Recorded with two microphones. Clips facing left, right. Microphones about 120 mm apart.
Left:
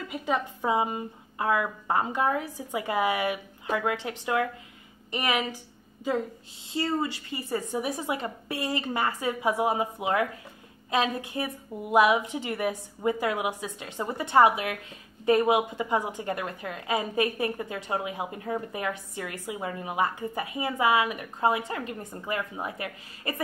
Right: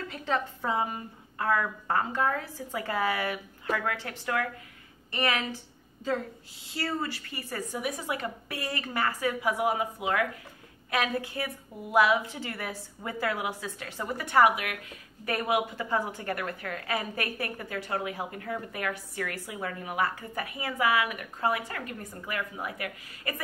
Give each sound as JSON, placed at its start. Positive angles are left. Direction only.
{"t": 0.1, "sound": "a woman's voice", "side_deg": 10}